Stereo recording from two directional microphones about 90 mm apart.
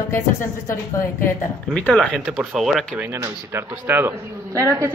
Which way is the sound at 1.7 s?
15° left (ahead or behind).